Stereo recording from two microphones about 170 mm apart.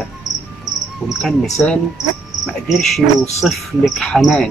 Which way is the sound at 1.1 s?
Centre (ahead or behind).